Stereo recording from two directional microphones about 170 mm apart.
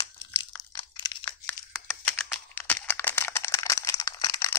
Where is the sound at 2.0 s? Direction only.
10° left (ahead or behind).